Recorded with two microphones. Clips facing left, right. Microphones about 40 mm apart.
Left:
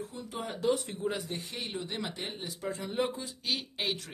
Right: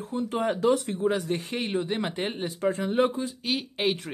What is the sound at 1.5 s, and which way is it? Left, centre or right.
Speech, right.